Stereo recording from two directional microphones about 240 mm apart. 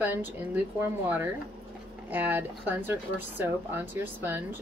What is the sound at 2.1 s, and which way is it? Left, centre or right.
Speech, centre.